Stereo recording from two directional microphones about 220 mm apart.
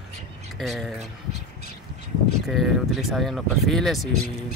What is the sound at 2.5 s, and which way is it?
Speech, centre (ahead or behind).